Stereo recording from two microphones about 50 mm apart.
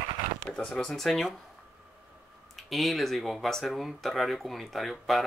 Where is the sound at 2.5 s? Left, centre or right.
Centre.